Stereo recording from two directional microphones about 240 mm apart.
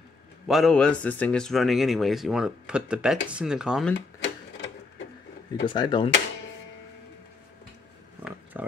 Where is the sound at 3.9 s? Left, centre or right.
Left.